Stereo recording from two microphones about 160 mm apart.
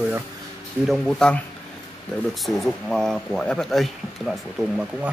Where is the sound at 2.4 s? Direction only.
Centre (ahead or behind).